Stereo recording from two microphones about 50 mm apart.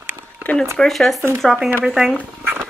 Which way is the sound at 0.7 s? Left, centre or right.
Centre.